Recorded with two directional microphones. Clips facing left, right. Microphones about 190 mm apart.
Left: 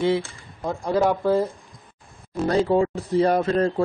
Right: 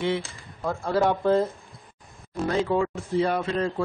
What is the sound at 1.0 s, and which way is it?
Speech, 10° left (ahead or behind).